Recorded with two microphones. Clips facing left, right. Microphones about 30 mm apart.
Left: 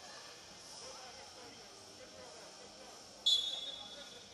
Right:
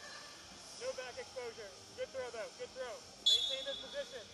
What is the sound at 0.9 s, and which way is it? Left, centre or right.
Vehicle, right.